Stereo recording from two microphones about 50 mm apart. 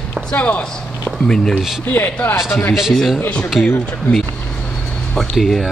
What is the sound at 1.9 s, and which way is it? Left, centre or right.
Speech, left.